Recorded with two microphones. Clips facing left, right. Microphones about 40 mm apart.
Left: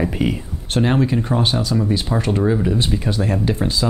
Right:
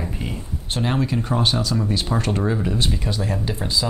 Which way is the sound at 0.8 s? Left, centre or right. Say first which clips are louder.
Left 5 dB; left.